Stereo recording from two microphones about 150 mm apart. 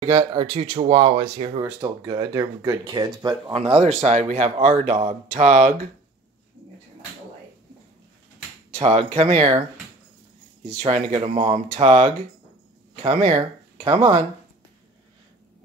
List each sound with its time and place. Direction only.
0.0 s speech: 35° right (ahead or behind)
1.6 s speech: 20° right (ahead or behind)
3.5 s a man's voice: 40° right (ahead or behind); by 5.8 s 55° right (ahead or behind)
8.7 s a man's voice: 50° right (ahead or behind)
10.9 s a man's voice: 45° right (ahead or behind)